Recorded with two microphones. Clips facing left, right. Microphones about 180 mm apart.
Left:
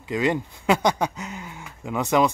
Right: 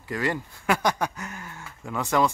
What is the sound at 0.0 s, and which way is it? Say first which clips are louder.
Speech: left 5 dB; 20° left (ahead or behind).